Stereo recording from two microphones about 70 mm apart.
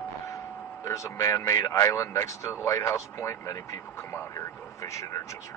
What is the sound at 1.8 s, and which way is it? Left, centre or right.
Speech, left.